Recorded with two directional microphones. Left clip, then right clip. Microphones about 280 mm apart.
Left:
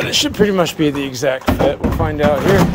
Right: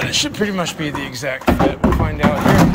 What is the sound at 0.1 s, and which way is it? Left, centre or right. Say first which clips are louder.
Speech: left 4 dB; left.